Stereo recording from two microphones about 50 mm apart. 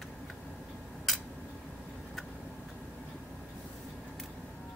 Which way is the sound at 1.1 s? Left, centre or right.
Centre.